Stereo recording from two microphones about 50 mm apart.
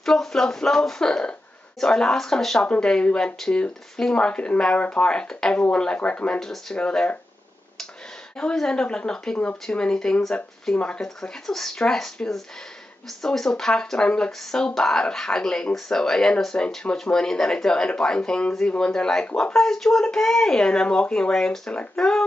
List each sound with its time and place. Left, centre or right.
0.0 s speech: centre
6.4 s speech: centre
8.4 s speech: centre
19.5 s speech: centre